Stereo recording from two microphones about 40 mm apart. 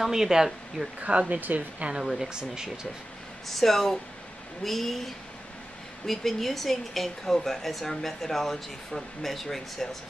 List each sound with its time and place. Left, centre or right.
0.0 s speech: centre
1.1 s a woman's voice: right
1.9 s speech: centre
3.5 s speech: centre